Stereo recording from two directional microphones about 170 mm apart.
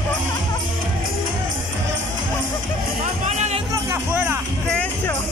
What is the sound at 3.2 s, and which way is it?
Music, 40° right (ahead or behind).